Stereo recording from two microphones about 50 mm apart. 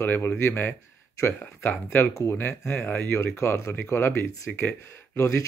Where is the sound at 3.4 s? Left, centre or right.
Left.